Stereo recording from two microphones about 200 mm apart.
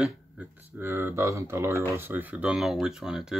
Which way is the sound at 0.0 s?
10° right (ahead or behind).